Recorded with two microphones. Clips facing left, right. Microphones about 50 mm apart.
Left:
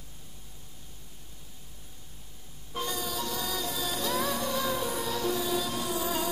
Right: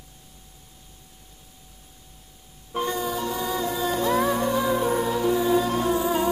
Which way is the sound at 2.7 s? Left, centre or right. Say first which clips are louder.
Right 7 dB; right.